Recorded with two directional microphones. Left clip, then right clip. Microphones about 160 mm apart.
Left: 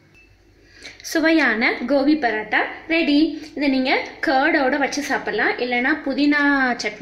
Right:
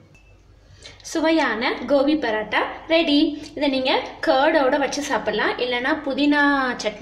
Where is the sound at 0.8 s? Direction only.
50° left (ahead or behind).